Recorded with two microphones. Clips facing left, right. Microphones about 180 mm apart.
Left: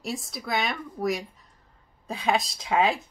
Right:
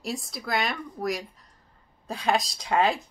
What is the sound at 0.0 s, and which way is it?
Speech, centre (ahead or behind).